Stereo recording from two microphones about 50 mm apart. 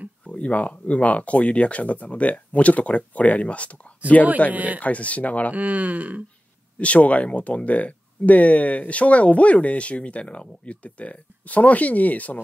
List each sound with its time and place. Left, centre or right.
0.2 s speech: left
4.5 s speech: right
4.7 s speech: left
5.5 s speech: right
6.8 s speech: left